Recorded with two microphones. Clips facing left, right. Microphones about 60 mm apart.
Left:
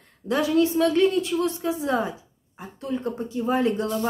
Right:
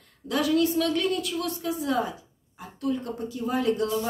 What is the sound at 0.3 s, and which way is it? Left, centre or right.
A woman's voice, left.